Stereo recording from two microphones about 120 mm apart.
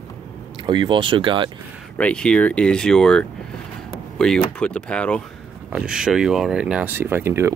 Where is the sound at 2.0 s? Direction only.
10° left (ahead or behind).